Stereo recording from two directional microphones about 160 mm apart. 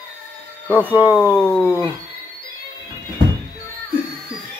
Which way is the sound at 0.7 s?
10° left (ahead or behind).